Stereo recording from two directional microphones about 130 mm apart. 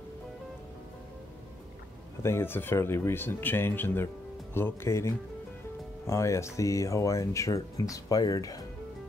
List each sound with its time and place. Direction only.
2.2 s speech: 20° left (ahead or behind)